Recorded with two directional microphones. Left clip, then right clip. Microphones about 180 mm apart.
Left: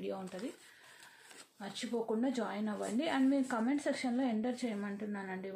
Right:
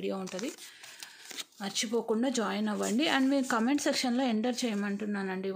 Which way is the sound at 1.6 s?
45° right (ahead or behind).